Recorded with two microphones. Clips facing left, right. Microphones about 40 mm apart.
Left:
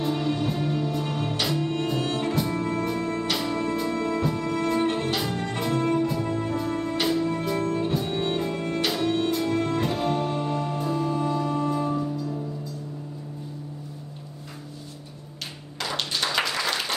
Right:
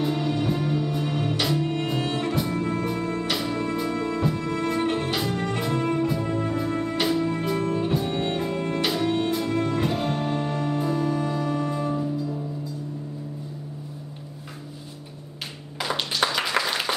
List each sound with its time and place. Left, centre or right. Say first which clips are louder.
0.0 s music: right 1 dB; centre
15.8 s clapping: right 3 dB; centre
16.6 s applause: right 3 dB; right